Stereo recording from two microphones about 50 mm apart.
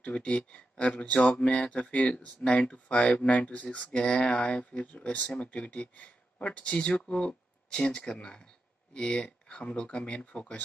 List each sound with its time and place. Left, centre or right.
0.0 s speech: left
4.0 s speech: centre
4.3 s speech: left